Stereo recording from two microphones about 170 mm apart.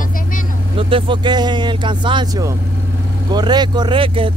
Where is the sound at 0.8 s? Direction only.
30° right (ahead or behind).